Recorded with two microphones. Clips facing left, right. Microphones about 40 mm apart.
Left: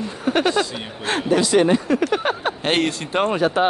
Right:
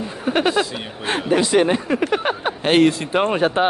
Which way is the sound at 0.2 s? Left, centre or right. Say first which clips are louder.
Right 1 dB; centre.